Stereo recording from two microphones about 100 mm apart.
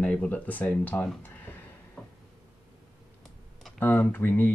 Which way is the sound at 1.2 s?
20° left (ahead or behind).